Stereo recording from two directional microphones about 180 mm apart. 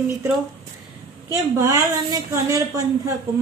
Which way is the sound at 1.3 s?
20° right (ahead or behind).